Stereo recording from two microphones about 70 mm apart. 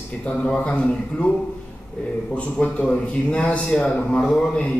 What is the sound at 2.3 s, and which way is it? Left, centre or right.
A man's voice, centre.